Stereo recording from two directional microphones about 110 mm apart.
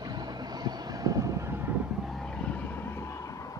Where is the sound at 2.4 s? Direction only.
15° left (ahead or behind).